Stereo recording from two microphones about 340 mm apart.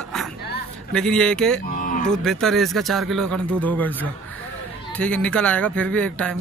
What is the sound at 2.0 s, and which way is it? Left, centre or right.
Speech, centre.